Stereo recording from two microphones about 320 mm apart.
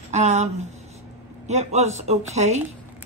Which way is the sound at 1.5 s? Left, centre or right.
Right.